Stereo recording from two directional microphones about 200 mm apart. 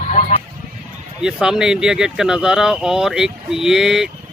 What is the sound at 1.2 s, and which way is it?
Speech, 5° right (ahead or behind).